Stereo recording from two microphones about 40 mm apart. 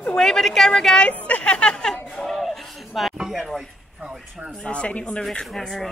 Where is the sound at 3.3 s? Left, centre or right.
Centre.